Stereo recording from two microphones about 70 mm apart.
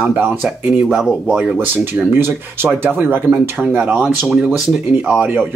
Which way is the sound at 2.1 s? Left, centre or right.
Right.